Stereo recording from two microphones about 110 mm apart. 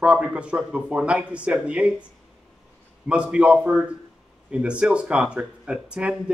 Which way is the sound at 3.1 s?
10° right (ahead or behind).